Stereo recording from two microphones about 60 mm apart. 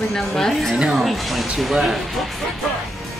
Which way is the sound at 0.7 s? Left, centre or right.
Centre.